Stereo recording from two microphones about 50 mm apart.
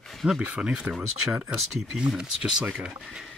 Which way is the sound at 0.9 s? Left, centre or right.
Centre.